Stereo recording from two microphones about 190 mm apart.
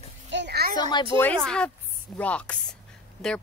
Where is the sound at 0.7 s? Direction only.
25° left (ahead or behind).